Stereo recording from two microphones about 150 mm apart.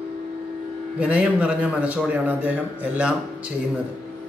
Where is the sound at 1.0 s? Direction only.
10° right (ahead or behind).